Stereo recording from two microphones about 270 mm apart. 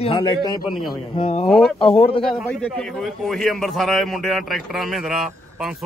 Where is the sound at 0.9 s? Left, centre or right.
Left.